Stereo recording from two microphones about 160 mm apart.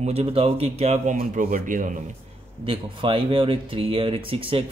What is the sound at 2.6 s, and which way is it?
Speech, 35° right (ahead or behind).